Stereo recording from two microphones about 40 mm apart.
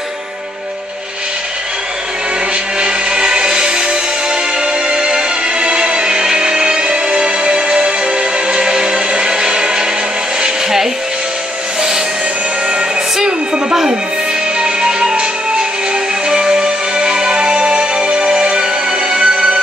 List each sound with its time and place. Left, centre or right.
2.8 s music: right
13.2 s a sound: centre
14.6 s music: right